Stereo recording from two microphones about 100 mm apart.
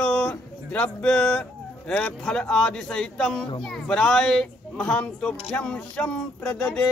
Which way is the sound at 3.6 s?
5° left (ahead or behind).